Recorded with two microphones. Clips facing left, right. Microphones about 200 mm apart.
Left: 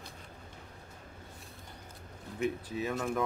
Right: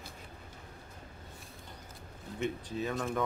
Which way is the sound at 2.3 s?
Centre (ahead or behind).